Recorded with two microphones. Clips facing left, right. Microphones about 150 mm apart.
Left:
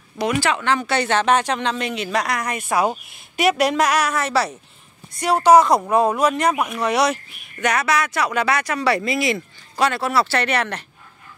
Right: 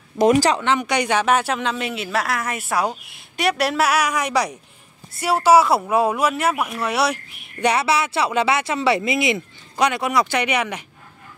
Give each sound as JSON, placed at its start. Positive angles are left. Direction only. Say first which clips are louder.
{"t": 0.2, "sound": "speech", "louder": "right 5 dB", "side_deg": -40}
{"t": 0.6, "sound": "speech", "louder": "even", "side_deg": -20}
{"t": 7.6, "sound": "speech", "louder": "right 1 dB", "side_deg": -30}